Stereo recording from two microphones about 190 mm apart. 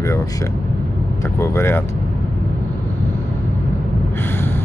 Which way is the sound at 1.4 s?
15° left (ahead or behind).